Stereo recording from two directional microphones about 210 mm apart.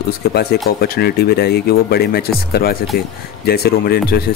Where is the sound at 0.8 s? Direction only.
50° left (ahead or behind).